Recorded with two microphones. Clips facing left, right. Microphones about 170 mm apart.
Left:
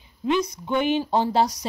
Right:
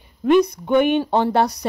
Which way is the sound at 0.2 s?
60° right (ahead or behind).